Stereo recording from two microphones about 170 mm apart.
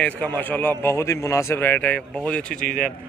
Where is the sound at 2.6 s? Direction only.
55° left (ahead or behind).